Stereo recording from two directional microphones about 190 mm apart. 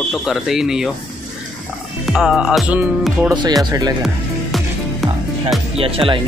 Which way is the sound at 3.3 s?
25° right (ahead or behind).